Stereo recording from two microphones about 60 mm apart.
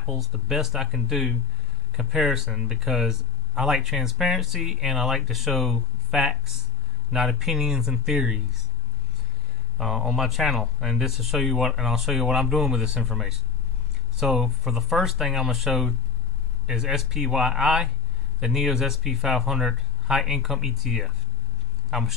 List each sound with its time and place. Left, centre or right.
0.0 s speech: centre
0.3 s speech: centre
9.8 s speech: centre